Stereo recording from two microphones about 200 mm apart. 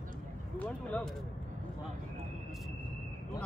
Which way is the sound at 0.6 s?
5° left (ahead or behind).